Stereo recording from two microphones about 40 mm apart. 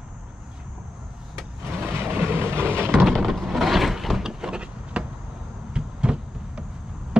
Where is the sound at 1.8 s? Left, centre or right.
Right.